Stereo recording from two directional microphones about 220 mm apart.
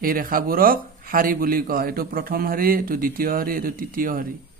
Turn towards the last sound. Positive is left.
turn(degrees=-40)  # may be behind; listen again after turning